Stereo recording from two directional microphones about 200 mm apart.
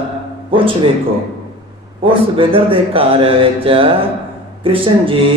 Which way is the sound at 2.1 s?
25° right (ahead or behind).